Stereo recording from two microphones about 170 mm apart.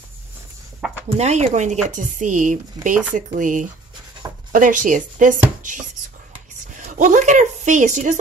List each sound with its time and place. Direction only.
1.1 s speech: 40° right (ahead or behind)
6.8 s a woman's voice: 50° right (ahead or behind)